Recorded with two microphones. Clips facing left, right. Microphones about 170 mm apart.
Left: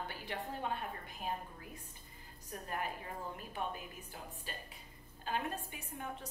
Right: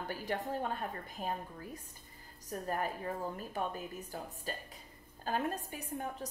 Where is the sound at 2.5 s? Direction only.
40° right (ahead or behind).